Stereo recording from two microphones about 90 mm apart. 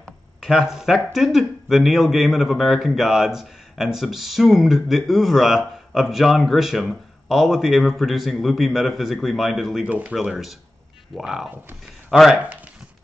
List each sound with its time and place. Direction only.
0.0 s speech: centre (ahead or behind)
9.8 s speech: 15° right (ahead or behind)
10.1 s speech: 5° right (ahead or behind)